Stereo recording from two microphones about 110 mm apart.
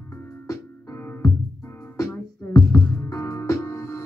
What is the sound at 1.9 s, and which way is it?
Music, 35° left (ahead or behind).